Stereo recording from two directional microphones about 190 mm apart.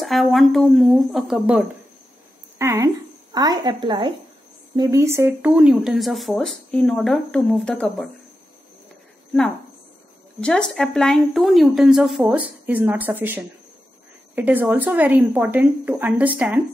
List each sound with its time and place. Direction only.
0.0 s speech: centre (ahead or behind)
2.6 s a woman's voice: 15° right (ahead or behind); by 8.1 s 5° left (ahead or behind)
10.4 s speech: 5° left (ahead or behind)